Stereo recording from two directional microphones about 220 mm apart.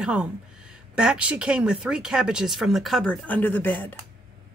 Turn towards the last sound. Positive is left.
turn(degrees=10)  # may be behind; listen again after turning